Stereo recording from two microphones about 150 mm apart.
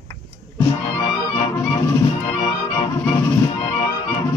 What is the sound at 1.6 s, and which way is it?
Music, 20° left (ahead or behind).